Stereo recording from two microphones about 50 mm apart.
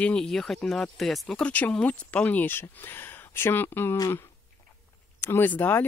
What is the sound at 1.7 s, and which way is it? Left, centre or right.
Speech, left.